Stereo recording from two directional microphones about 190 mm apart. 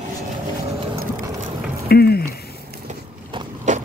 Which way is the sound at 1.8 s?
55° left (ahead or behind).